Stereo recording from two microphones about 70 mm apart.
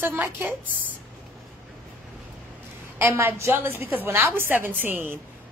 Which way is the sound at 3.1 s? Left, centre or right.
Right.